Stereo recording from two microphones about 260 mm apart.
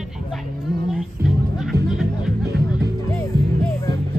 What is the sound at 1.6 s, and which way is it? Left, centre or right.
Music, centre.